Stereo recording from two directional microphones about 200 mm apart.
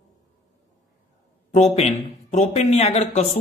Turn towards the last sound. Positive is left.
turn(degrees=35)  # may be behind; listen again after turning